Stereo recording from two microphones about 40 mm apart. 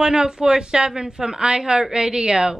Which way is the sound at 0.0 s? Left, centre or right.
Centre.